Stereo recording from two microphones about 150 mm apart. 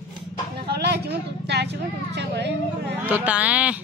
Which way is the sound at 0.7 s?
90° right.